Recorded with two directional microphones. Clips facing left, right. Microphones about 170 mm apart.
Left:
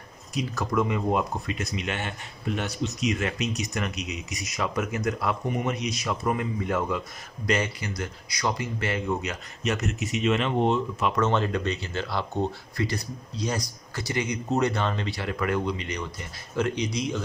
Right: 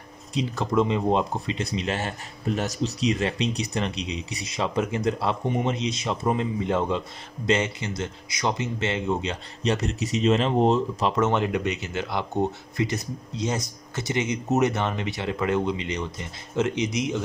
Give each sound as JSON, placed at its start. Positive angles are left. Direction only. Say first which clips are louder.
{"t": 0.3, "sound": "speech", "louder": "right 3 dB", "side_deg": -25}
{"t": 11.1, "sound": "speech", "louder": "right 1 dB", "side_deg": -15}